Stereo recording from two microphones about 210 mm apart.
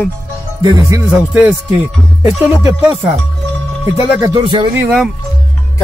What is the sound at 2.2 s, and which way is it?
Speech, 30° left (ahead or behind).